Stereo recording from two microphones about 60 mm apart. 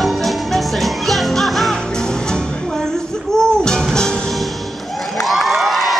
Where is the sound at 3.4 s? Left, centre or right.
Centre.